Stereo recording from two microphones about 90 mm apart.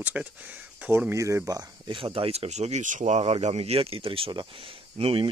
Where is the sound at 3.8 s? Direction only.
90° right.